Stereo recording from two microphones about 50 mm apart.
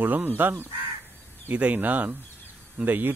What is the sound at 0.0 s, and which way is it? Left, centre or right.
Speech, right.